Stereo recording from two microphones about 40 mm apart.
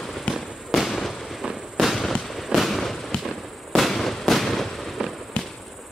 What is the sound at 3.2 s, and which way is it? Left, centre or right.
Fireworks, centre.